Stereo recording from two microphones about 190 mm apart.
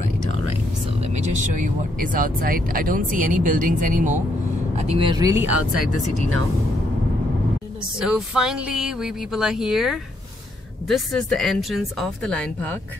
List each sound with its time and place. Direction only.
1.1 s speech: 40° right (ahead or behind)
4.7 s speech: 30° right (ahead or behind)
8.1 s speech: 5° right (ahead or behind)